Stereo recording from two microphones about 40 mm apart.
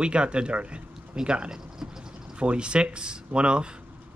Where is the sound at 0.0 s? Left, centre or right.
Right.